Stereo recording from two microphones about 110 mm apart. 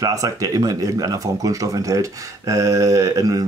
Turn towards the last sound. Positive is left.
turn(degrees=-30)  # may be behind; listen again after turning